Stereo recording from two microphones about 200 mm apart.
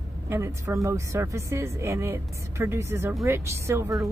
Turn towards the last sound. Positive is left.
turn(degrees=-15)  # may be behind; listen again after turning